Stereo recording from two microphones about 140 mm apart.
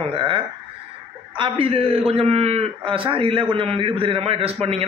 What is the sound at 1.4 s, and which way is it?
A man's voice, 40° right (ahead or behind).